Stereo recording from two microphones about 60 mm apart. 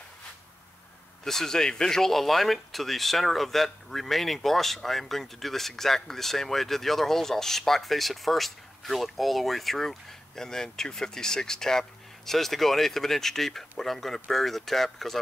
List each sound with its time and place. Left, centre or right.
1.2 s speech: centre